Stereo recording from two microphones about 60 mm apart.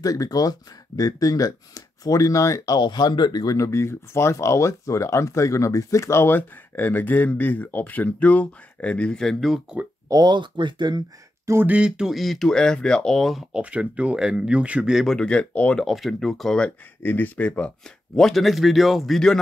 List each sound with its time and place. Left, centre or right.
0.0 s speech: left; by 9.4 s centre
9.7 s speech: centre
10.1 s speech: right
11.6 s speech: centre
12.1 s speech: centre
12.4 s speech: centre
13.5 s speech: centre
15.0 s speech: centre
15.8 s speech: centre
17.0 s speech: left; by 19.3 s centre